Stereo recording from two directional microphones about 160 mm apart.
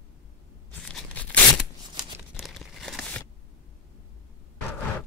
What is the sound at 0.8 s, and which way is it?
Tearing, 5° left (ahead or behind).